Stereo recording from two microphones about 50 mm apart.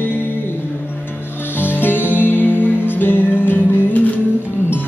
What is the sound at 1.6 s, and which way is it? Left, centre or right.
Music, left.